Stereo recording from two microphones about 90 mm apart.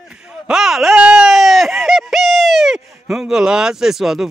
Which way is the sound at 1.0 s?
10° right (ahead or behind).